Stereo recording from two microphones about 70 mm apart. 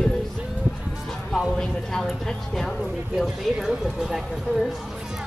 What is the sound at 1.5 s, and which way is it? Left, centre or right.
Speech, centre.